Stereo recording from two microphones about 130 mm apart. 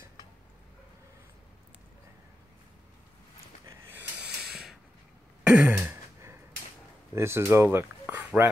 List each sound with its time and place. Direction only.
3.9 s snort: 5° right (ahead or behind)
5.4 s a sound: 5° right (ahead or behind)
7.2 s speech: 20° right (ahead or behind)